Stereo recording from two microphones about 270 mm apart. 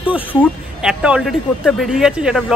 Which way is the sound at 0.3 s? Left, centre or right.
Centre.